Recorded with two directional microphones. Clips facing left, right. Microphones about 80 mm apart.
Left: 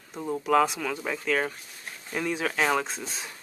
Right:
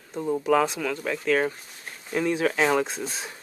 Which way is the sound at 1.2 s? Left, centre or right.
Centre.